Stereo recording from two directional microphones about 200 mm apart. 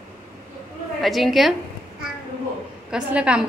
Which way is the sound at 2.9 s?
5° right (ahead or behind).